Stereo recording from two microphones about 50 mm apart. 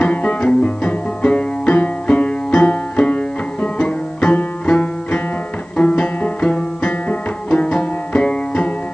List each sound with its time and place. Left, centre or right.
0.0 s music: left